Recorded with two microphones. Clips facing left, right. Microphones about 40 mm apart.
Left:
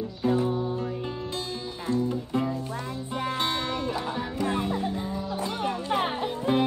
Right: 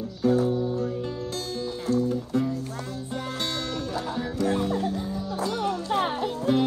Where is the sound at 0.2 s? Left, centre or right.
Left.